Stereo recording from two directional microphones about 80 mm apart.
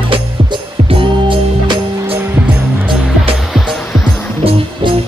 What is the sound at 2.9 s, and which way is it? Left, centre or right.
Music, centre.